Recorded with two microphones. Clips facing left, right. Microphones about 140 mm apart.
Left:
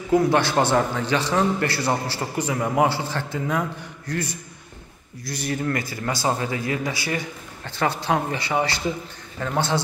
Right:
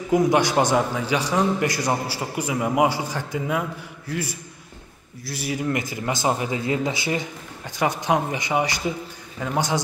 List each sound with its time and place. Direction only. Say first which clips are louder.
0.1 s a man's voice: even; 15° right (ahead or behind)
5.7 s a man's voice: right 1 dB; 15° right (ahead or behind)